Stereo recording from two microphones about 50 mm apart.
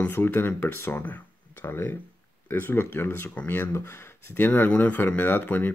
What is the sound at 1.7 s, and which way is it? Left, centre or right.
Speech, left.